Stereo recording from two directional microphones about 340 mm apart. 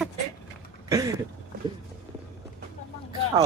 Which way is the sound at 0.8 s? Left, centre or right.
Centre.